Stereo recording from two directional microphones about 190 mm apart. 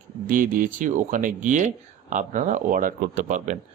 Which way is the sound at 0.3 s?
45° right (ahead or behind).